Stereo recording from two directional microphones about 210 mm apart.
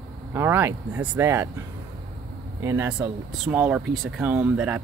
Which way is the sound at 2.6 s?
15° right (ahead or behind).